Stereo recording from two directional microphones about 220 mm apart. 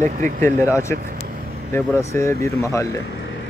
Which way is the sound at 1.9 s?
15° left (ahead or behind).